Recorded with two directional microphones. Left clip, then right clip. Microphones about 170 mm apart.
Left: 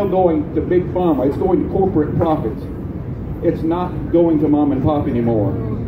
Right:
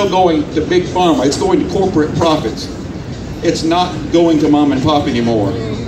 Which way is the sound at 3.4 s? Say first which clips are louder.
Right 5 dB; 25° right (ahead or behind).